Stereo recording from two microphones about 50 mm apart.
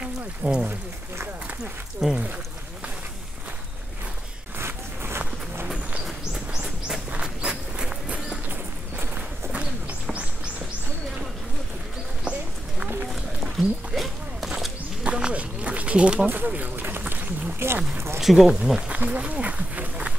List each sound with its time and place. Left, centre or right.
0.0 s speech: centre
2.0 s speech: centre
4.6 s a sound: right
6.0 s bird: centre
7.1 s walk: centre
9.5 s bird: right
12.3 s clip-clop: right
13.1 s a sound: centre
15.0 s a sound: right
16.3 s speech: right
17.6 s speech: right
18.2 s speech: centre
18.9 s speech: right